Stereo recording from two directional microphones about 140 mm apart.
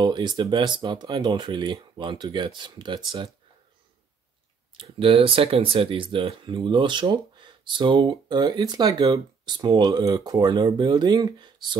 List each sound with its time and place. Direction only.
0.0 s speech: 30° right (ahead or behind)
4.7 s speech: 40° right (ahead or behind)